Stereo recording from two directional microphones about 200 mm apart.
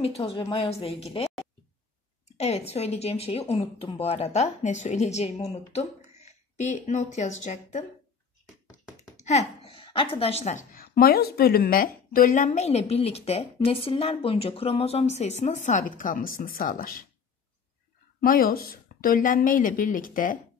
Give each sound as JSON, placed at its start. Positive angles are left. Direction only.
{"t": 0.0, "sound": "a woman's voice", "side_deg": 25}
{"t": 2.3, "sound": "a woman's voice", "side_deg": 30}
{"t": 9.1, "sound": "a sound", "side_deg": 35}
{"t": 9.8, "sound": "a woman's voice", "side_deg": 25}
{"t": 18.2, "sound": "a woman's voice", "side_deg": 45}